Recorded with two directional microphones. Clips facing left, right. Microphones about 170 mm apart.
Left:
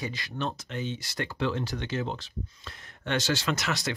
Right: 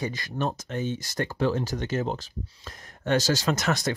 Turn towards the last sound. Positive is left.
turn(degrees=-45)  # may be behind; listen again after turning